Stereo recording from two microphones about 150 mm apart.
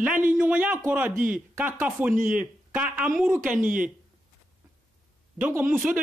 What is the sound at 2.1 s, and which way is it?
Speech, 65° right (ahead or behind).